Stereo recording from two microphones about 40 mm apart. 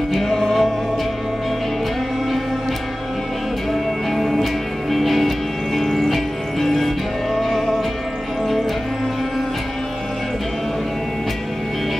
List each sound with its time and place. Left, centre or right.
0.2 s music: centre
4.1 s music: centre